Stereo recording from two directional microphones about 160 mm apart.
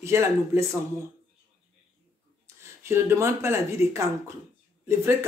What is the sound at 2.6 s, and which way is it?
Speech, 15° right (ahead or behind).